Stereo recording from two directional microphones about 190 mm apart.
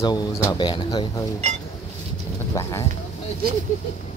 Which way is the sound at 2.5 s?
15° left (ahead or behind).